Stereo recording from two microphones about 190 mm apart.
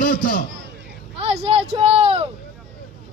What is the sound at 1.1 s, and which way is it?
Speech, 30° right (ahead or behind).